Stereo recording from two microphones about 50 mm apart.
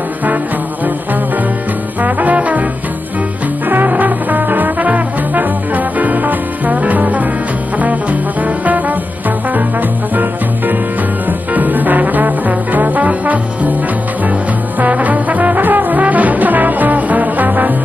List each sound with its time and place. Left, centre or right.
2.0 s trombone: right
3.6 s trombone: right
7.8 s music: right
14.8 s brass instrument: right